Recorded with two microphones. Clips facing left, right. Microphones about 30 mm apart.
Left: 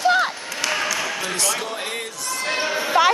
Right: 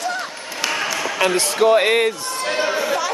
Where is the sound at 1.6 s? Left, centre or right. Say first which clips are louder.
Right 14 dB; right.